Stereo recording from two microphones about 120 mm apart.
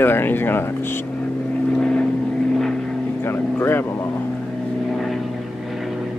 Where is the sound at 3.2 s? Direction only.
20° left (ahead or behind).